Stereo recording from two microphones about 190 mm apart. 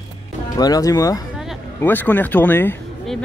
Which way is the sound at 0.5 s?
20° left (ahead or behind).